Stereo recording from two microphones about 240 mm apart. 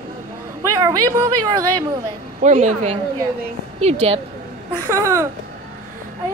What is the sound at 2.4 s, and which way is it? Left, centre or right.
A woman's voice, right.